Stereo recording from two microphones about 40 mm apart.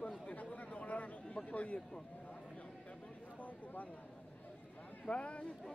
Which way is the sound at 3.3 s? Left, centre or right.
Left.